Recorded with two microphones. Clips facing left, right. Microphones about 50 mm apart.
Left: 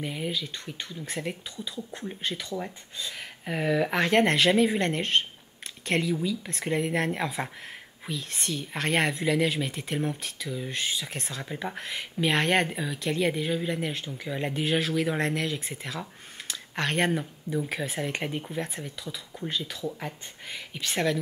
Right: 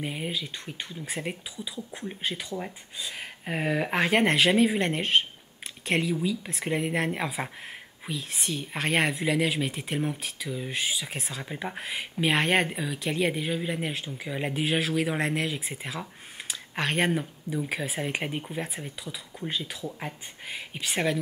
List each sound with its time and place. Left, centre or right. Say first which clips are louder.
0.0 s speech: left 1 dB; centre
3.2 s speech: even; right
6.4 s speech: left 1 dB; centre